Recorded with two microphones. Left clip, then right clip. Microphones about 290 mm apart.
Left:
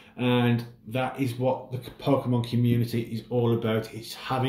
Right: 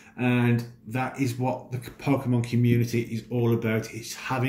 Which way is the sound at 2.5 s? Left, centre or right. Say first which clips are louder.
Right 2 dB; left.